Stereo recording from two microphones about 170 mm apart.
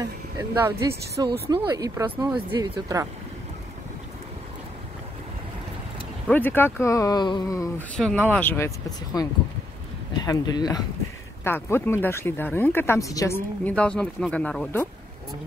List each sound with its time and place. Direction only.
0.4 s speech: 15° right (ahead or behind)
6.2 s speech: 10° left (ahead or behind)
7.9 s speech: 5° left (ahead or behind); by 10.8 s 25° left (ahead or behind)
11.4 s speech: 15° left (ahead or behind)
13.7 s speech: 5° left (ahead or behind)